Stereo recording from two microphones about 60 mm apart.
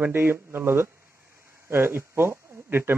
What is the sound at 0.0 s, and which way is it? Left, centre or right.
A man's voice, right.